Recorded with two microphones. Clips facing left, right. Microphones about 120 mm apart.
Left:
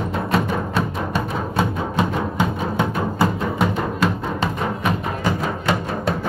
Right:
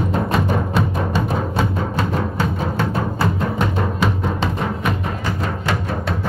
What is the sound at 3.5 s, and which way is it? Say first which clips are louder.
Music: even; centre (ahead or behind).